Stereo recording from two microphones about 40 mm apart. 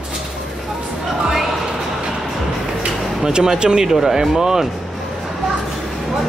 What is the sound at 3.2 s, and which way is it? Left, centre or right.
Speech, centre.